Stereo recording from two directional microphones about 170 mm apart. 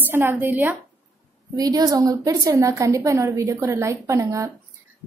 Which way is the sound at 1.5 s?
20° right (ahead or behind).